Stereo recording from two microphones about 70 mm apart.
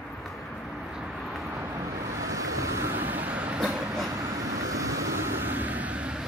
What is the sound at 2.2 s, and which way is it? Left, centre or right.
Vehicle, right.